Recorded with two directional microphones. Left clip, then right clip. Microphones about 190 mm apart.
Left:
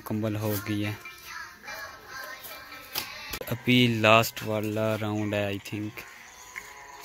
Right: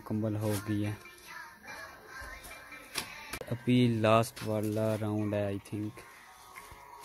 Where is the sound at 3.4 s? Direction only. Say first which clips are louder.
Left 6 dB; centre (ahead or behind).